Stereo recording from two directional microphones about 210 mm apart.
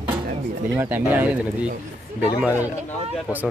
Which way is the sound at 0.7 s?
10° right (ahead or behind).